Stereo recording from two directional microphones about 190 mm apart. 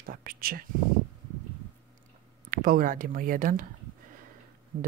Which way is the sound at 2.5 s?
50° right (ahead or behind).